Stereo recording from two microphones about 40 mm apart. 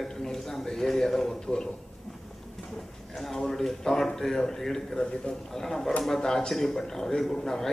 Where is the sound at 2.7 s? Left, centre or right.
Centre.